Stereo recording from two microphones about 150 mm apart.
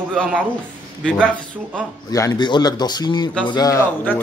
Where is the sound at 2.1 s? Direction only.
25° left (ahead or behind).